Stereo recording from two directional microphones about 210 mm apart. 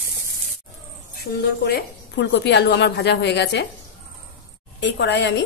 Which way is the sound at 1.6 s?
55° left (ahead or behind).